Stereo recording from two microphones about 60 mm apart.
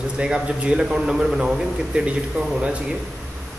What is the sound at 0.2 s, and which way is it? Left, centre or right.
A man's voice, centre.